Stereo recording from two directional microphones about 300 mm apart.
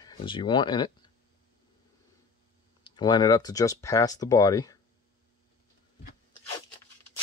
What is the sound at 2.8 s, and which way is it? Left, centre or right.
Speech, centre.